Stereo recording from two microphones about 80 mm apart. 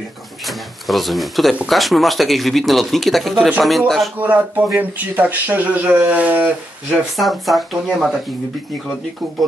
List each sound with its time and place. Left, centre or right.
0.5 s speech: centre
4.2 s speech: right
7.2 s speech: centre